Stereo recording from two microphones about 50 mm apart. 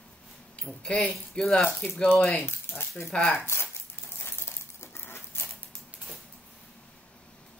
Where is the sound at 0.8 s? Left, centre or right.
Centre.